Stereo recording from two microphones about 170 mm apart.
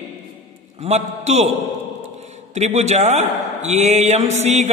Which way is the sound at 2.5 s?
40° right (ahead or behind).